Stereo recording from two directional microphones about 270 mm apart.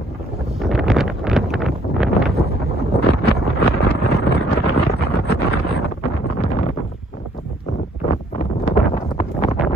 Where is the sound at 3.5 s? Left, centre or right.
Left.